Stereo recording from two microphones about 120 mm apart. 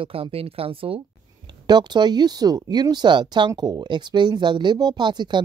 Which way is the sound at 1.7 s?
35° right (ahead or behind).